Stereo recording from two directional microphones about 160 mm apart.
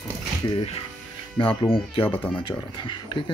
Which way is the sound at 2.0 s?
10° left (ahead or behind).